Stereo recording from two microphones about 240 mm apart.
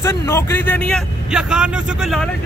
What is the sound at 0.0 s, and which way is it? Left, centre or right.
Speech, centre.